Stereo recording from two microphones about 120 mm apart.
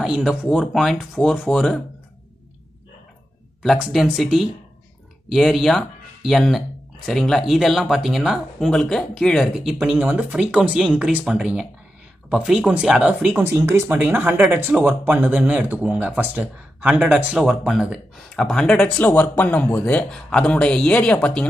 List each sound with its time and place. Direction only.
0.0 s speech: 5° right (ahead or behind)
3.6 s speech: 5° right (ahead or behind)
13.4 s a man's voice: 20° right (ahead or behind); by 21.5 s 10° left (ahead or behind)